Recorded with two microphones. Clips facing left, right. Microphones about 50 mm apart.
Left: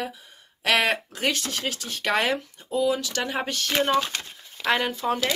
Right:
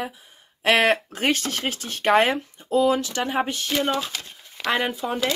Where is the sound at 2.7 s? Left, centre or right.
Right.